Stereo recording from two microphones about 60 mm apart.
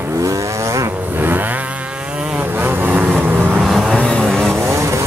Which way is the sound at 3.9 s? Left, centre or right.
Centre.